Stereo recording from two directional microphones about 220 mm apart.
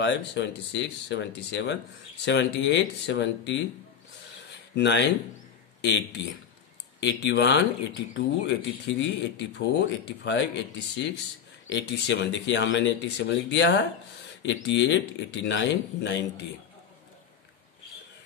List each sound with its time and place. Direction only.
0.0 s speech: 55° left (ahead or behind)
4.7 s a man's voice: 50° left (ahead or behind)